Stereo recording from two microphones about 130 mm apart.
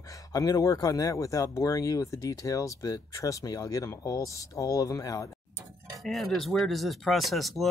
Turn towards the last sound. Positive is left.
turn(degrees=0)  # may be behind; listen again after turning